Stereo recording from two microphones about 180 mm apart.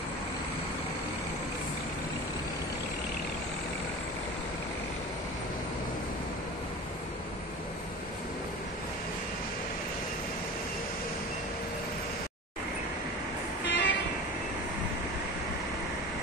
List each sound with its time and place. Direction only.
13.7 s vehicle: 85° left